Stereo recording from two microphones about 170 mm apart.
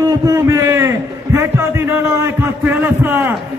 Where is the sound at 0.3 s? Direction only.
15° right (ahead or behind).